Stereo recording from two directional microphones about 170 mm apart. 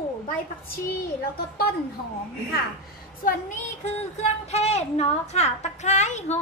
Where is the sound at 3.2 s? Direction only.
50° left (ahead or behind).